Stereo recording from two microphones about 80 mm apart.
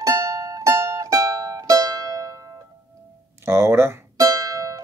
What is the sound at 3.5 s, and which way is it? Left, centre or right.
Speech, right.